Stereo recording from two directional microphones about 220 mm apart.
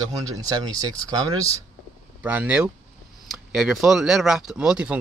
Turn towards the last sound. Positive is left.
turn(degrees=-5)  # may be behind; listen again after turning